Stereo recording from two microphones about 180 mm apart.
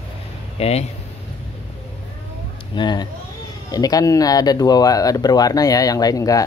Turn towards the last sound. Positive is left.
turn(degrees=20)  # may be behind; listen again after turning